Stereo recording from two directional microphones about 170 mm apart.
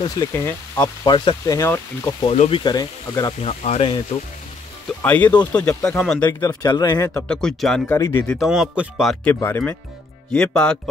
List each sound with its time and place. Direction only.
0.0 s speech: 15° left (ahead or behind)
1.0 s speech: 25° left (ahead or behind)
2.3 s speech: 40° left (ahead or behind)
2.6 s speech: 25° left (ahead or behind)
3.4 s speech: 35° left (ahead or behind)
5.0 s speech: 10° left (ahead or behind)
6.4 s speech: 20° left (ahead or behind)
7.2 s speech: 5° left (ahead or behind)
8.0 s speech: 20° left (ahead or behind)
8.3 s speech: centre (ahead or behind)
9.2 s speech: 10° left (ahead or behind)